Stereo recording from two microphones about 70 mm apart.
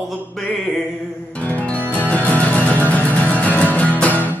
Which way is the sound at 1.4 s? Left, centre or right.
Left.